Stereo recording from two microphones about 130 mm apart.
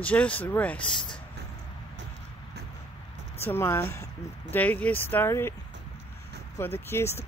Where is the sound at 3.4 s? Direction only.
20° left (ahead or behind).